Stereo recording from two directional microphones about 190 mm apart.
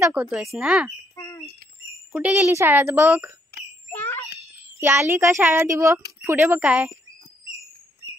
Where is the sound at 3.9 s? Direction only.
10° left (ahead or behind).